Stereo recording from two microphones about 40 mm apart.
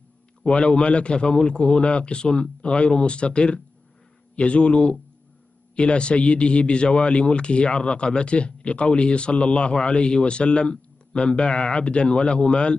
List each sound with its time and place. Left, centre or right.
0.5 s a man's voice: left